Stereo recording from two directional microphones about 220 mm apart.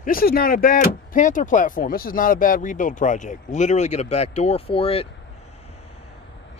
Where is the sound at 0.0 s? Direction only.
40° left (ahead or behind); by 5.0 s 25° left (ahead or behind).